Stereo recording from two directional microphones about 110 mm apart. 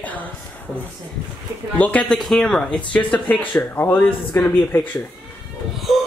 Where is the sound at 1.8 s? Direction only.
10° left (ahead or behind).